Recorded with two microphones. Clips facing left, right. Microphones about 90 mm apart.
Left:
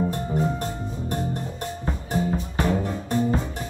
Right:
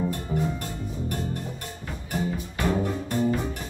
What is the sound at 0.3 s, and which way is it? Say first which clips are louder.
Music: left 2 dB; 30° left (ahead or behind).